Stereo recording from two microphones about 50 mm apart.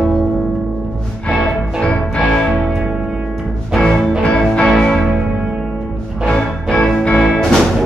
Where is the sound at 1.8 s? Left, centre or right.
Centre.